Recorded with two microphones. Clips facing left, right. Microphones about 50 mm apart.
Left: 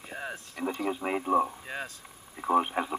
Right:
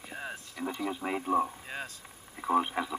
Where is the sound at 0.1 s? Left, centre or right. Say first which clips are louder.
Left 2 dB; centre.